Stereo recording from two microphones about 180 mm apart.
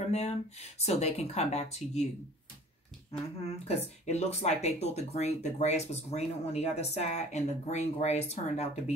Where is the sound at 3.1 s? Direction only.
35° left (ahead or behind).